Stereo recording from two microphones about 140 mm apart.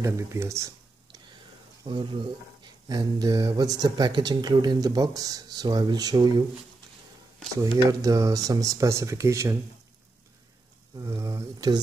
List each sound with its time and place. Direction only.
0.0 s speech: 20° right (ahead or behind)
1.8 s speech: 30° right (ahead or behind)
7.5 s speech: 25° right (ahead or behind)
11.0 s speech: 20° right (ahead or behind)